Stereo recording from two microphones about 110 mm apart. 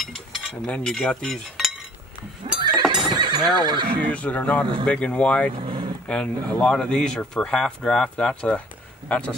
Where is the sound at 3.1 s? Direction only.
40° right (ahead or behind).